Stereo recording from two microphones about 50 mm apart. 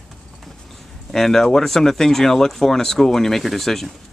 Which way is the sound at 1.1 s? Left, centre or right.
Centre.